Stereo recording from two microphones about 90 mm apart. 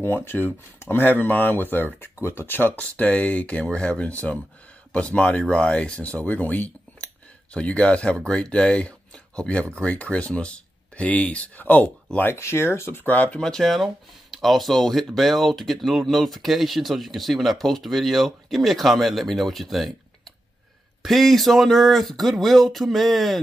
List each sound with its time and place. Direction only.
0.0 s speech: 25° left (ahead or behind)
13.4 s speech: 5° left (ahead or behind)